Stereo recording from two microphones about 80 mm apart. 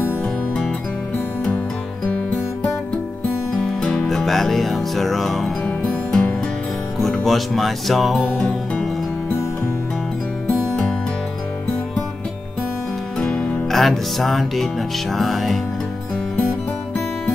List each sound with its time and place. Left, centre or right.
2.0 s music: left
3.6 s music: centre
7.0 s speech: centre
8.4 s music: centre
13.2 s music: centre